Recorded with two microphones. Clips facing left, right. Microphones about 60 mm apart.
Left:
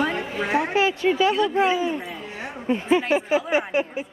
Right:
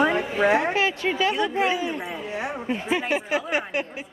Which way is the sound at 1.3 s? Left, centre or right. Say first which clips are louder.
Left 3 dB; centre.